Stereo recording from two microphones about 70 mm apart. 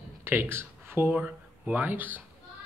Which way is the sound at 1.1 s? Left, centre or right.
Right.